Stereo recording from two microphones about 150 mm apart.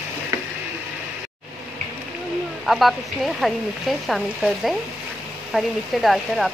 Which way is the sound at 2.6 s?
Centre (ahead or behind).